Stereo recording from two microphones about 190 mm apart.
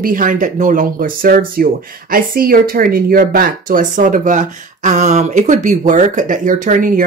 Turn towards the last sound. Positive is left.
turn(degrees=-45)  # may be behind; listen again after turning